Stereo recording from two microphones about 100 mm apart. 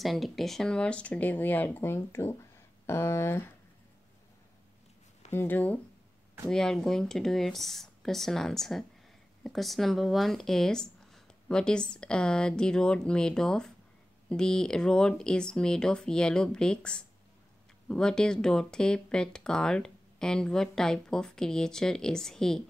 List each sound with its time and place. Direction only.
0.0 s speech: centre (ahead or behind); by 3.4 s 25° left (ahead or behind)
5.3 s speech: 20° left (ahead or behind)
6.4 s speech: 5° left (ahead or behind)